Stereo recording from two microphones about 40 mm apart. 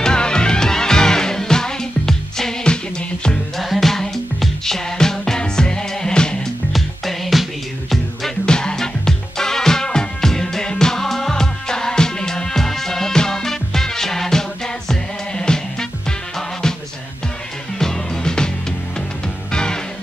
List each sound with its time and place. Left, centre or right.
0.0 s music: centre
2.6 s music: left
3.5 s music: centre
6.7 s music: centre
8.5 s music: centre
17.7 s music: centre
19.5 s music: centre